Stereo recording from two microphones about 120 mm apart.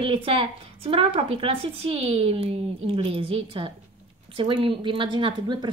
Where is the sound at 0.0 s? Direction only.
50° right (ahead or behind).